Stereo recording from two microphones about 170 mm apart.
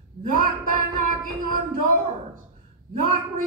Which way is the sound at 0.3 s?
50° right (ahead or behind).